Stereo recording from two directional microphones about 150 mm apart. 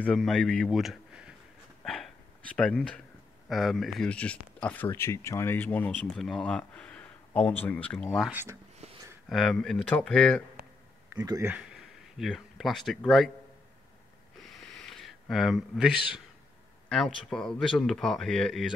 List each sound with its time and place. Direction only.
0.0 s speech: 5° left (ahead or behind)
1.9 s a sound: 5° left (ahead or behind)
3.4 s speech: centre (ahead or behind)
4.9 s speech: 20° left (ahead or behind)
8.3 s speech: 15° right (ahead or behind)
8.8 s a sound: 45° right (ahead or behind)
9.3 s speech: centre (ahead or behind)
11.1 s speech: 20° right (ahead or behind)
12.2 s speech: centre (ahead or behind)
14.4 s a sound: centre (ahead or behind)
16.9 s speech: 5° left (ahead or behind)